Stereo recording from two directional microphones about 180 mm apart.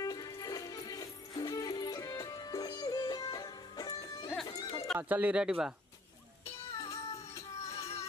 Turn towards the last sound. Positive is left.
turn(degrees=35)  # may be behind; listen again after turning